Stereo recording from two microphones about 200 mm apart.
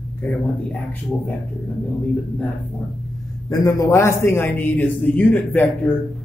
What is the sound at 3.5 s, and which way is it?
A man's voice, 15° left (ahead or behind).